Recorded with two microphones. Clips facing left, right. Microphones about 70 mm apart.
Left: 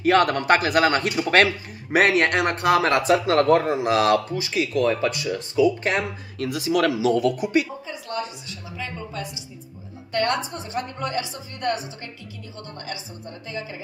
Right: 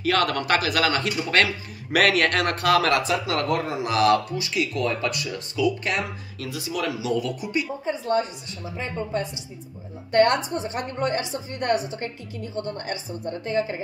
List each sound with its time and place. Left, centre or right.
0.0 s speech: left
3.1 s speech: left
6.5 s speech: left
7.8 s a woman's voice: right